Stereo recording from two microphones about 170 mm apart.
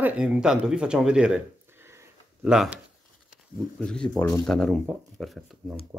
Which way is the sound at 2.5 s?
5° right (ahead or behind).